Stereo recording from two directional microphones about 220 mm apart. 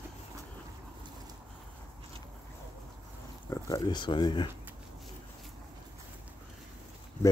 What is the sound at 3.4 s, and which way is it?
Speech, 15° left (ahead or behind).